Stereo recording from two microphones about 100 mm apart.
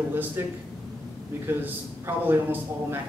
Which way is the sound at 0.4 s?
25° right (ahead or behind).